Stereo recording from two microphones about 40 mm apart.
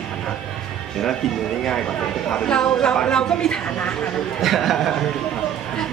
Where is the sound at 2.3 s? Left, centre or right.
Centre.